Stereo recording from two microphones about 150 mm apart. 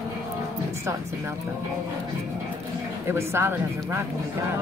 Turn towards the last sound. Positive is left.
turn(degrees=-15)  # may be behind; listen again after turning